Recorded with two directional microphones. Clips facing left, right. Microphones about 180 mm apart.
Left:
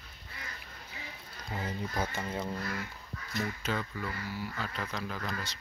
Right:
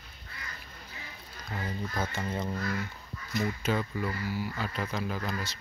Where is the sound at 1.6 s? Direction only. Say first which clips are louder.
Right 1 dB; 15° left (ahead or behind).